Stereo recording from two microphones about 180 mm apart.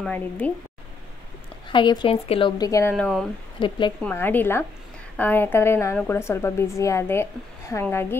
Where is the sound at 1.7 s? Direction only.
25° left (ahead or behind).